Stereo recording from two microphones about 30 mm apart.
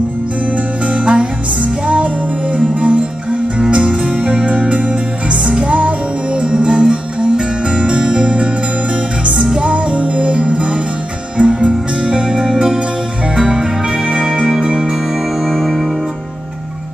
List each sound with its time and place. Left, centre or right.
0.8 s music: right
5.6 s music: right
6.4 s music: right
12.0 s music: right
15.5 s music: centre